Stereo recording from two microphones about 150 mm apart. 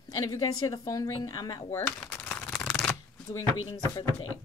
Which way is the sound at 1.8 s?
10° left (ahead or behind).